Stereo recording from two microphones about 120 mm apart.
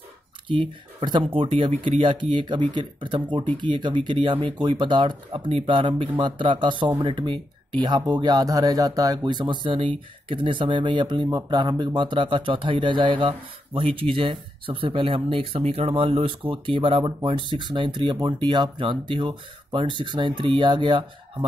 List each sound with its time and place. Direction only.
0.5 s speech: 40° right (ahead or behind)